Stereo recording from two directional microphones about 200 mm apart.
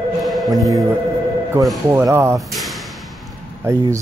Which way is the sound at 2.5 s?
Centre (ahead or behind).